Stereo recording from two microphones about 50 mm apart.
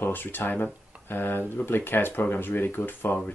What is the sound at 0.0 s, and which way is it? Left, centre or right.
Speech, left.